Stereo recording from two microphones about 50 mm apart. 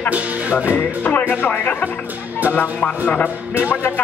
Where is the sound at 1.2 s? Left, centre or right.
Left.